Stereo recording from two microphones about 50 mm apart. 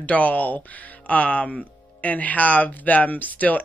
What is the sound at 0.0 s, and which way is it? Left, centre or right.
Speech, left.